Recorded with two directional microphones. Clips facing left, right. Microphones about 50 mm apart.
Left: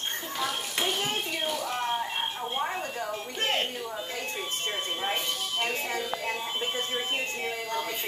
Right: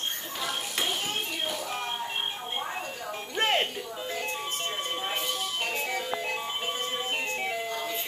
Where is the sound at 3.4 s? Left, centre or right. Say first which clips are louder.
Right 3 dB; right.